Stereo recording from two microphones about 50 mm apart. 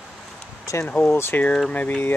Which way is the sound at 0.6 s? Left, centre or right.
Left.